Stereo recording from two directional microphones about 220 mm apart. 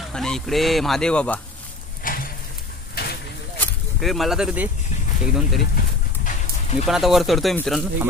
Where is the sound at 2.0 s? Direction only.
40° left (ahead or behind).